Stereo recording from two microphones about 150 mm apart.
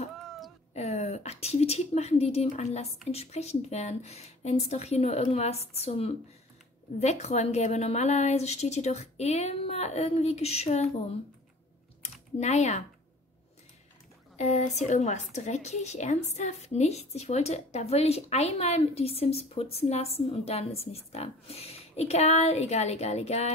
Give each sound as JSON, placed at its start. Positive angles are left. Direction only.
{"t": 0.7, "sound": "a woman's voice", "side_deg": 50}
{"t": 12.0, "sound": "typing", "side_deg": 50}
{"t": 14.3, "sound": "a woman's voice", "side_deg": 50}